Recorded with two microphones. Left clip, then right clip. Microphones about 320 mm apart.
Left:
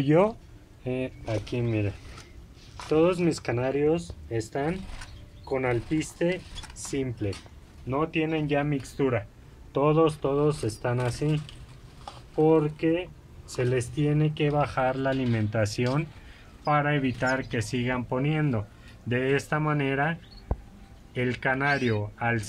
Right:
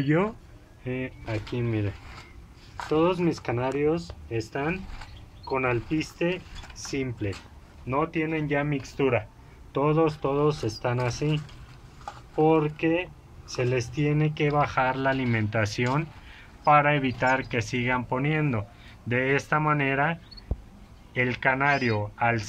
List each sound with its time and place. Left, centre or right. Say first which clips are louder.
0.0 s speech: left 3 dB; centre
20.5 s a sound: left 6 dB; left
21.1 s speech: right 3 dB; centre